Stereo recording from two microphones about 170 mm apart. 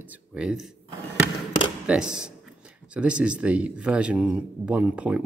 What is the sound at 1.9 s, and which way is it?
Speech, 5° right (ahead or behind).